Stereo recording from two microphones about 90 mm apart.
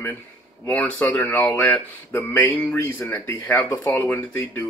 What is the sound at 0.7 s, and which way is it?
Speech, 15° left (ahead or behind).